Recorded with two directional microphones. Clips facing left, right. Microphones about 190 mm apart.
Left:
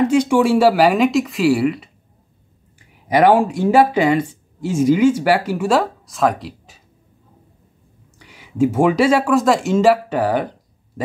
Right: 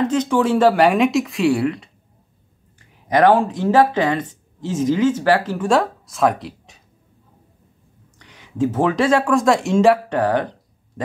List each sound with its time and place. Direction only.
0.0 s speech: 10° left (ahead or behind)
3.1 s speech: 10° left (ahead or behind)
8.2 s speech: 10° left (ahead or behind)